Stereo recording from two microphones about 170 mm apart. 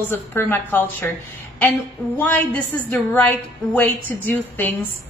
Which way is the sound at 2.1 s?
10° left (ahead or behind).